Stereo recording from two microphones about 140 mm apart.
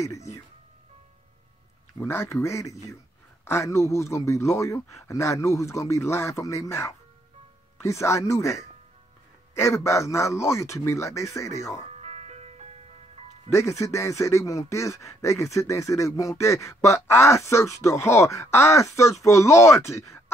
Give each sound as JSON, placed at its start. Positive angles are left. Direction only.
{"t": 0.0, "sound": "speech", "side_deg": 25}
{"t": 2.0, "sound": "speech", "side_deg": 20}
{"t": 11.9, "sound": "ice cream truck", "side_deg": -55}
{"t": 13.6, "sound": "speech", "side_deg": 20}